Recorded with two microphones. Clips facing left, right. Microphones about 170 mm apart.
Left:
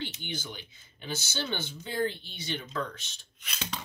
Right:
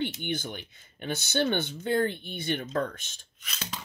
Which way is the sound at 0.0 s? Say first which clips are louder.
Right 7 dB; 55° right (ahead or behind).